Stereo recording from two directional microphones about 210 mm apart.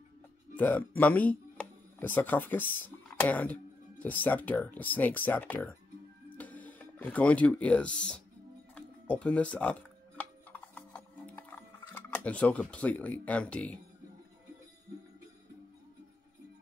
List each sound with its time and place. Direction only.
0.6 s speech: 10° left (ahead or behind)
8.7 s music: 5° left (ahead or behind)